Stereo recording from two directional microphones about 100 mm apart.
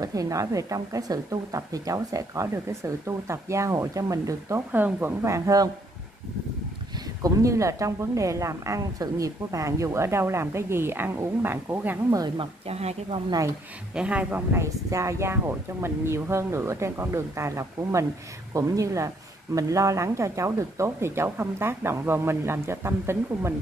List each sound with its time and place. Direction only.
0.0 s a woman's voice: 35° right (ahead or behind)
4.7 s speech: 20° right (ahead or behind)
7.2 s speech: 30° right (ahead or behind)
12.4 s speech: 90° right
13.9 s speech: 15° right (ahead or behind)
14.5 s speech: 30° right (ahead or behind)